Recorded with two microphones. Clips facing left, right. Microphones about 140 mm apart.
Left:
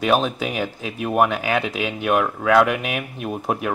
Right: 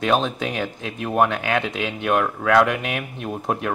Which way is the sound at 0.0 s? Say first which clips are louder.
Left 1 dB; 5° left (ahead or behind).